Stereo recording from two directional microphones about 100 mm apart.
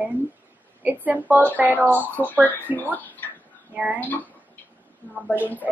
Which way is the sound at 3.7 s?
15° right (ahead or behind).